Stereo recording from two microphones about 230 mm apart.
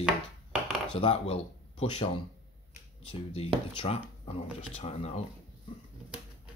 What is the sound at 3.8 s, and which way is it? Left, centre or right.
Speech, left.